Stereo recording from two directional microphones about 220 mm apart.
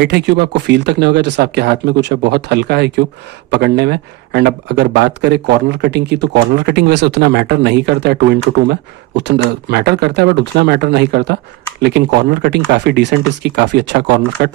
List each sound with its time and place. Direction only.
0.0 s speech: 50° right (ahead or behind)